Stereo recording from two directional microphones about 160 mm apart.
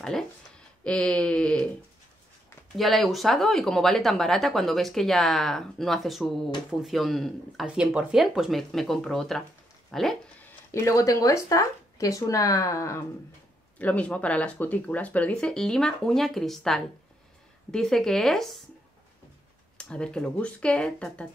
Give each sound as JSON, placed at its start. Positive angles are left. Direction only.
{"t": 0.8, "sound": "speech", "side_deg": 5}
{"t": 2.8, "sound": "speech", "side_deg": 0}
{"t": 10.7, "sound": "speech", "side_deg": 20}
{"t": 19.8, "sound": "speech", "side_deg": 5}